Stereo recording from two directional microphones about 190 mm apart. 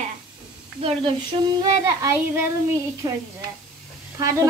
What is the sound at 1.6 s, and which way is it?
Child singing, 15° right (ahead or behind).